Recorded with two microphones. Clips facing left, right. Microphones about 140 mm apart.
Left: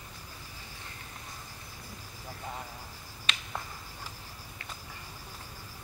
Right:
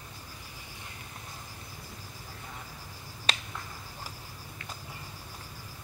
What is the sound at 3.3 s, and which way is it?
Finger snapping, 35° right (ahead or behind).